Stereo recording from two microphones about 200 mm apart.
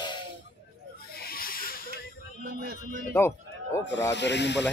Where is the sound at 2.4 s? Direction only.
55° right (ahead or behind).